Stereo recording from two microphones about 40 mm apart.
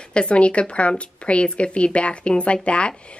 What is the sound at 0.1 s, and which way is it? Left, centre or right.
A woman's voice, left.